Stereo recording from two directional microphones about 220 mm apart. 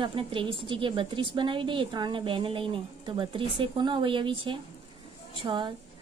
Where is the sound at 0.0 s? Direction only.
25° right (ahead or behind).